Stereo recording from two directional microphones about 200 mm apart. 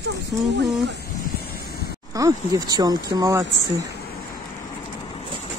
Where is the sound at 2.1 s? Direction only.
15° right (ahead or behind).